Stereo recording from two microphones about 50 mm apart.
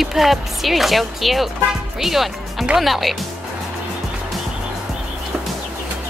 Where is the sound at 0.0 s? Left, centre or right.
Centre.